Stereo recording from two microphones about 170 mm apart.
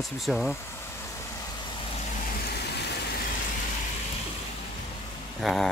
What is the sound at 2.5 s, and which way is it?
Vehicle, 70° left (ahead or behind).